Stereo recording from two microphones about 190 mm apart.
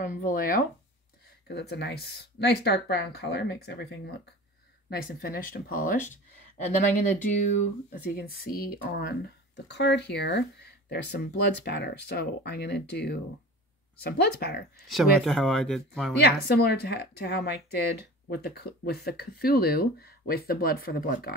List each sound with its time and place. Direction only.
0.0 s speech: 45° left (ahead or behind)
1.5 s speech: 60° left (ahead or behind); by 7.5 s 40° left (ahead or behind)
8.3 s speech: 50° left (ahead or behind)
9.7 s speech: 65° left (ahead or behind)
14.9 s speech: centre (ahead or behind)
16.2 s speech: 60° left (ahead or behind)